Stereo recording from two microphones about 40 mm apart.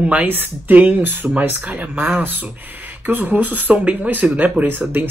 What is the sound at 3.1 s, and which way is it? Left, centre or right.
Speech, right.